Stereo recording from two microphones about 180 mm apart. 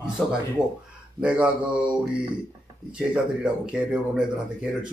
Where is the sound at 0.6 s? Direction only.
Centre (ahead or behind).